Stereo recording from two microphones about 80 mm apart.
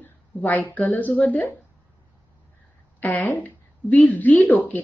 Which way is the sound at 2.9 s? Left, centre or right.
Left.